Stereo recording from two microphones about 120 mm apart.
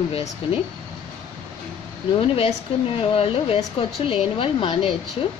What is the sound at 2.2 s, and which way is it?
A woman's voice, 50° left (ahead or behind).